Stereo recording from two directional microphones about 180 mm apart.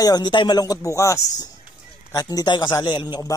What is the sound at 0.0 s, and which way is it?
A man's voice, 25° left (ahead or behind).